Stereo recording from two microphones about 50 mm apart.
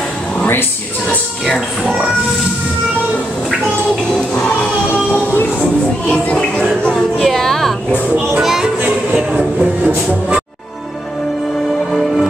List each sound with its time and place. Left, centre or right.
4.3 s music: left
5.3 s music: left
6.0 s music: left
7.0 s a sound: centre
8.4 s music: centre
9.1 s music: right